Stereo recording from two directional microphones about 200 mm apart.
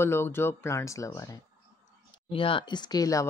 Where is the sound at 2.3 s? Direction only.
25° left (ahead or behind).